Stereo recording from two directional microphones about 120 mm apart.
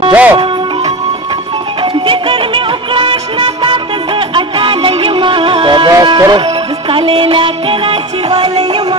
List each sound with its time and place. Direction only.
0.1 s music: 10° right (ahead or behind)
1.8 s music: 45° right (ahead or behind)
6.0 s speech: 40° right (ahead or behind)
6.4 s music: 50° right (ahead or behind)